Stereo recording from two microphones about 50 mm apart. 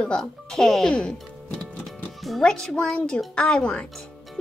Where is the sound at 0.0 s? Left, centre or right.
Centre.